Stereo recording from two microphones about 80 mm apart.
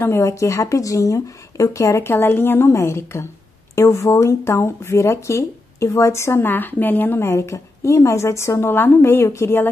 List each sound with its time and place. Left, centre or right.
0.0 s speech: left